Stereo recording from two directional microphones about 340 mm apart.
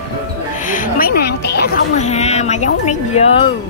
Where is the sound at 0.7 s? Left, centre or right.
Left.